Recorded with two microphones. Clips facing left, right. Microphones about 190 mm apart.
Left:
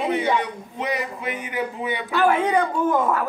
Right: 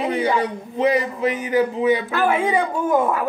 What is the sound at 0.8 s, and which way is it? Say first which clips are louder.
A man's voice: right 9 dB; 35° right (ahead or behind).